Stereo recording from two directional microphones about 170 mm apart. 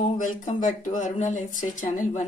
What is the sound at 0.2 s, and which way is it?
Speech, 50° left (ahead or behind).